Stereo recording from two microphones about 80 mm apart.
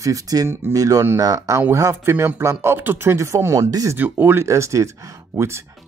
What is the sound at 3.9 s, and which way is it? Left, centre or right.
Speech, right.